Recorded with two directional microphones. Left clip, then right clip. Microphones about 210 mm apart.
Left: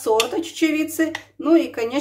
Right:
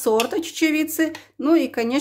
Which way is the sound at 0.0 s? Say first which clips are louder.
Left 1 dB; 55° right (ahead or behind).